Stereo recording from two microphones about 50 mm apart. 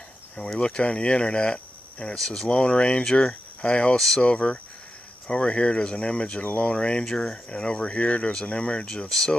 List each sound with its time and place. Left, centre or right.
0.6 s speech: centre
3.1 s speech: centre
3.6 s speech: left